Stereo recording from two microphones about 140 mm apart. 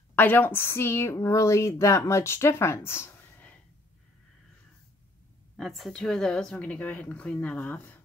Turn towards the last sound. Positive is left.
turn(degrees=10)  # may be behind; listen again after turning